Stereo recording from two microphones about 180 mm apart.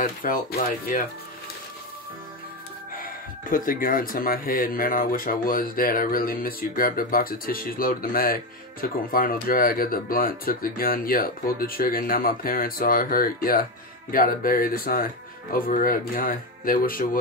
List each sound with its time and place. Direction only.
0.0 s speech: 50° left (ahead or behind)
2.9 s speech: 50° left (ahead or behind)